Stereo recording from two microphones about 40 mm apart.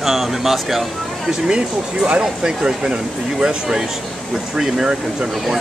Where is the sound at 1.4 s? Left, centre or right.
Right.